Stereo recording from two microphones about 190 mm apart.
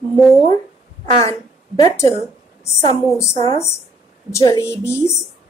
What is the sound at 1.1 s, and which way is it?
A woman's voice, 20° left (ahead or behind).